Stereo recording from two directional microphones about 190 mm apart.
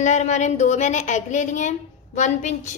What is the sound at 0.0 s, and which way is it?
A woman's voice, 40° left (ahead or behind).